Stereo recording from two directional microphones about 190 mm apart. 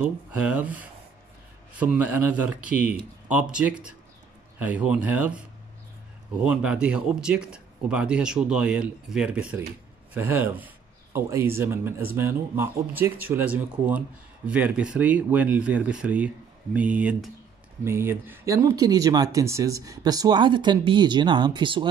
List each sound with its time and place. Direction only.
0.0 s speech: 10° right (ahead or behind)
6.4 s speech: 5° right (ahead or behind); by 21.8 s 25° right (ahead or behind)